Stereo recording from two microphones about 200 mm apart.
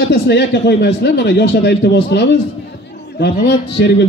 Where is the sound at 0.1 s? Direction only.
55° left (ahead or behind).